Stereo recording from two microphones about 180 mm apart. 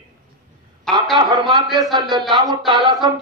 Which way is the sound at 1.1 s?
25° right (ahead or behind).